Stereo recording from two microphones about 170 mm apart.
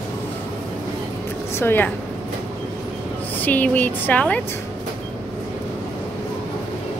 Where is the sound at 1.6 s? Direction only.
15° left (ahead or behind).